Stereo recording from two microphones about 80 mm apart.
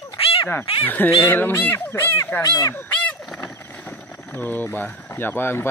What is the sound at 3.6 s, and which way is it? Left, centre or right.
Vehicle, left.